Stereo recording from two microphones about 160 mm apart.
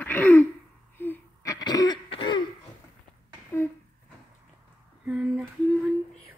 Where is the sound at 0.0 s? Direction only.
10° left (ahead or behind); by 2.4 s 30° left (ahead or behind).